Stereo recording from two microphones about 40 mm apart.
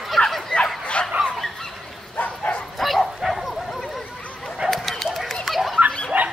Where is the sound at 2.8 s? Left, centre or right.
Centre.